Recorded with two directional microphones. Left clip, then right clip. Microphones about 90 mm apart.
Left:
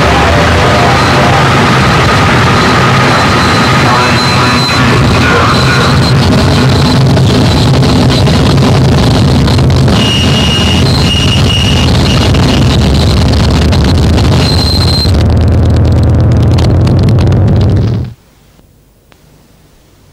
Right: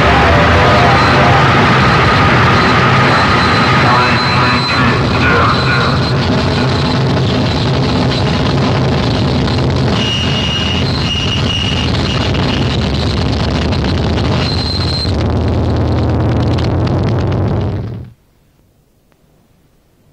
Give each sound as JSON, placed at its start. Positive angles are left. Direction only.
{"t": 0.0, "sound": "vehicle", "side_deg": -45}
{"t": 16.5, "sound": "vehicle", "side_deg": -45}